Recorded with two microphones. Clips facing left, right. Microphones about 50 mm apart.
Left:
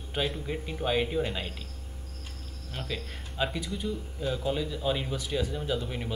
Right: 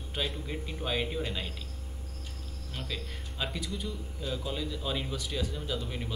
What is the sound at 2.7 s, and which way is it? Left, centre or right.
Speech, centre.